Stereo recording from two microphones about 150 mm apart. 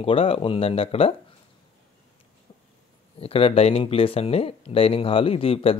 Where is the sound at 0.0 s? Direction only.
40° left (ahead or behind).